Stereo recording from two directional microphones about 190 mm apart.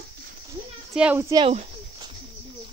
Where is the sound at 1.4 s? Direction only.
35° right (ahead or behind).